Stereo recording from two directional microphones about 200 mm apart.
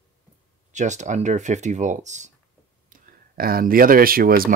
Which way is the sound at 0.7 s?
35° right (ahead or behind).